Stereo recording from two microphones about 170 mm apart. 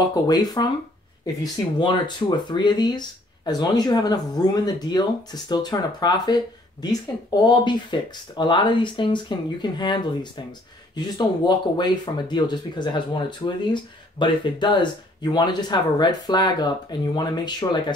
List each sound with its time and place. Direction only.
0.1 s speech: 25° left (ahead or behind)